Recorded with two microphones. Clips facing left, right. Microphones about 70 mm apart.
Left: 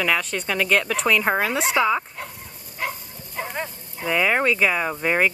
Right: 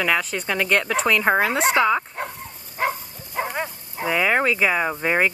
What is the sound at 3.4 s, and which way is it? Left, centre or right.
Bow-wow, centre.